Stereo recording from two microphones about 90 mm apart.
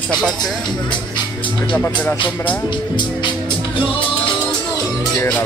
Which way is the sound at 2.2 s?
65° left (ahead or behind).